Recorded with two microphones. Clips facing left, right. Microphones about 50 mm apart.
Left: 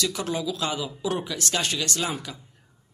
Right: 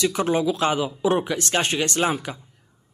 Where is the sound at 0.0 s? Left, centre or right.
Right.